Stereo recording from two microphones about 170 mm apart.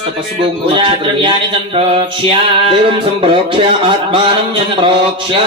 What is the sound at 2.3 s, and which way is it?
A man's voice, 30° right (ahead or behind).